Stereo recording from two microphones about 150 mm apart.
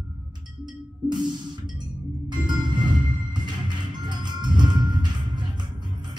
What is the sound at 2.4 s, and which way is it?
Music, 30° right (ahead or behind).